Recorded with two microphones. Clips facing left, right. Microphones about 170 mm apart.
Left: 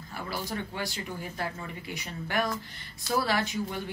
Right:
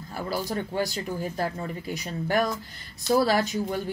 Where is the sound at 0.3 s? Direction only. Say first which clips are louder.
Right 6 dB; 40° right (ahead or behind).